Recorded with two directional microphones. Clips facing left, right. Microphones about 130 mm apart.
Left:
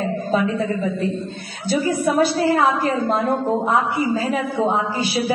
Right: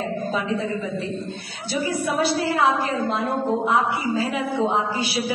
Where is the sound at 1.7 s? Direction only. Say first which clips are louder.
Left 5 dB; 45° left (ahead or behind).